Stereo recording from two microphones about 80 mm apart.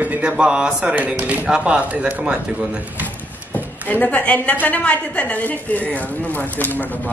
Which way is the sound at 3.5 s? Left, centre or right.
Left.